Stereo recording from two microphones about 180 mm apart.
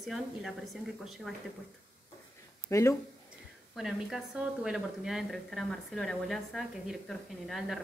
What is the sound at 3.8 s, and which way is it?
A woman's voice, centre (ahead or behind).